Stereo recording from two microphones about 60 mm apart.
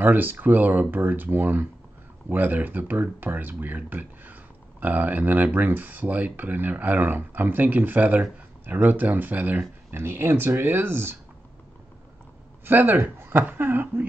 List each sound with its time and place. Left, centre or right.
0.0 s speech: right
9.6 s speech: right
12.6 s speech: right